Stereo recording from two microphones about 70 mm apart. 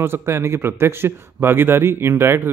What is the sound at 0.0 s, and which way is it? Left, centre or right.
Speech, right.